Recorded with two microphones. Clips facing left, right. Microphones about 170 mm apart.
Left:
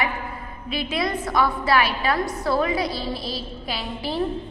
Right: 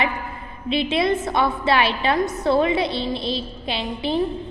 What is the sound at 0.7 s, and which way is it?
A woman's voice, 25° right (ahead or behind).